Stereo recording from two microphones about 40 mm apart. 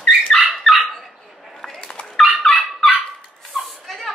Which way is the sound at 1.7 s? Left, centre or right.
Centre.